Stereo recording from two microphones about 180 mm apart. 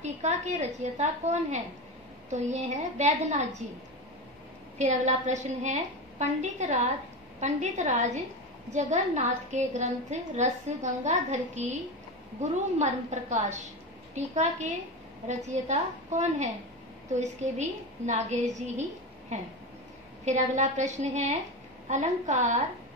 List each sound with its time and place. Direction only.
0.0 s a woman's voice: 40° right (ahead or behind)
4.7 s a woman's voice: 40° right (ahead or behind)